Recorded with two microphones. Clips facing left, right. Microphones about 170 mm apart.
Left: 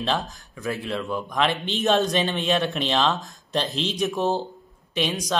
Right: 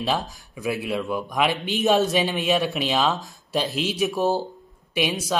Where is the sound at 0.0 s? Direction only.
10° right (ahead or behind).